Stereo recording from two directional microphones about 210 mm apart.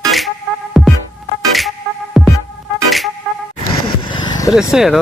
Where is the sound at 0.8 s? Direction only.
Centre (ahead or behind).